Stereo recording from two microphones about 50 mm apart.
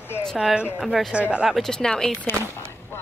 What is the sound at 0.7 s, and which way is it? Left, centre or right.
Speech, centre.